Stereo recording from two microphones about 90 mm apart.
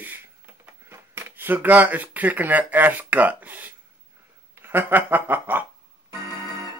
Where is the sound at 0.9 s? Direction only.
25° right (ahead or behind).